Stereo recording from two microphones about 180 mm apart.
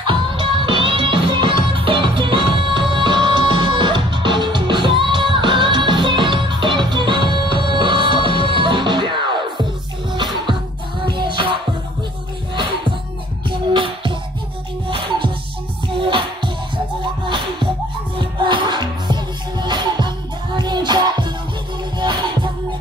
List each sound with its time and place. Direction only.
0.0 s music: 25° right (ahead or behind)
13.5 s music: 25° right (ahead or behind)